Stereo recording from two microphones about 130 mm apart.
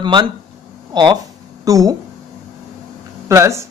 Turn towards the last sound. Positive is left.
turn(degrees=-20)  # may be behind; listen again after turning